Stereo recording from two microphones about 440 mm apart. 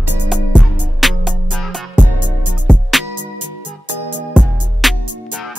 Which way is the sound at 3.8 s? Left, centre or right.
Right.